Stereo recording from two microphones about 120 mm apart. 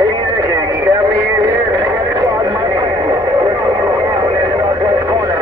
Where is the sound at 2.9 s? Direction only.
30° right (ahead or behind).